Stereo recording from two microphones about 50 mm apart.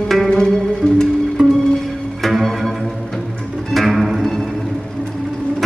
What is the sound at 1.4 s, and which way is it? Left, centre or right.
Music, centre.